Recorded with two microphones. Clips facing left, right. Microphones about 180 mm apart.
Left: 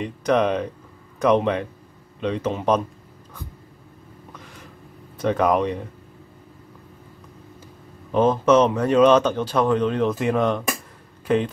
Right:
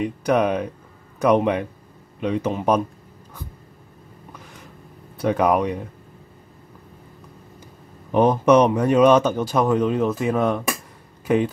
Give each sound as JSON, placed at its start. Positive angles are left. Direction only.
{"t": 0.0, "sound": "speech", "side_deg": -10}
{"t": 5.2, "sound": "speech", "side_deg": -10}
{"t": 8.1, "sound": "speech", "side_deg": -15}